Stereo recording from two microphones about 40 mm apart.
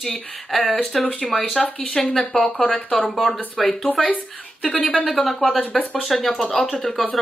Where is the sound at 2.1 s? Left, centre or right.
Centre.